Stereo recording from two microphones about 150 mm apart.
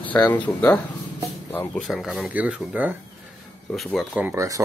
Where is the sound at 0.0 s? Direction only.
10° left (ahead or behind).